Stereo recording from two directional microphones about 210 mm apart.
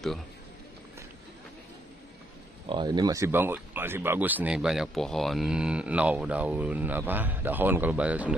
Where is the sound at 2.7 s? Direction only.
20° right (ahead or behind).